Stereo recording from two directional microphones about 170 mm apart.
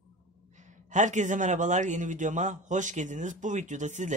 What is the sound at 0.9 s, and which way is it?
Speech, 45° right (ahead or behind).